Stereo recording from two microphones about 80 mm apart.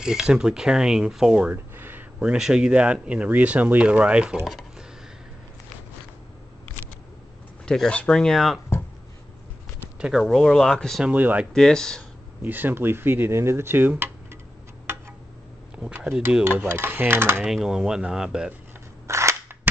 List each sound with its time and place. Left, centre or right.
0.0 s speech: centre
1.5 s a sound: right
2.2 s speech: centre
4.5 s a sound: centre
7.6 s speech: centre
9.8 s a sound: centre
10.1 s speech: centre
11.1 s speech: centre
11.5 s speech: centre
12.4 s speech: right
16.3 s speech: centre
16.6 s speech: right
17.4 s speech: centre
19.0 s cap gun: right